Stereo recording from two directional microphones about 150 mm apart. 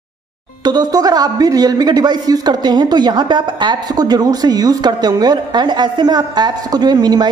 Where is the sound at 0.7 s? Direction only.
25° right (ahead or behind).